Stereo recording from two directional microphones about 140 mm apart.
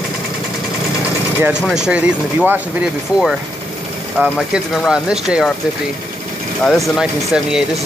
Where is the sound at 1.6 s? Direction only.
5° right (ahead or behind).